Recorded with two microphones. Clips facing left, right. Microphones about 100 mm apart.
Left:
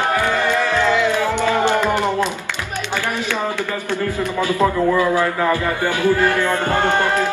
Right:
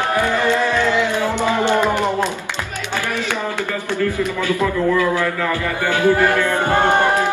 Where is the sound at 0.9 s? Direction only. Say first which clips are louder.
Left 1 dB; 20° right (ahead or behind).